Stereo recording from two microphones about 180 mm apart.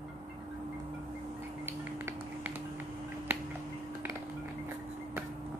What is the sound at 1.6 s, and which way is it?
Finger snapping, 10° right (ahead or behind).